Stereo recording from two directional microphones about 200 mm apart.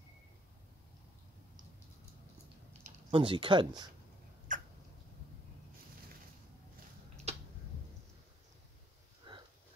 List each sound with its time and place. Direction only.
3.1 s speech: 25° right (ahead or behind)
4.5 s rodents: 40° right (ahead or behind)
7.3 s a sound: 35° right (ahead or behind)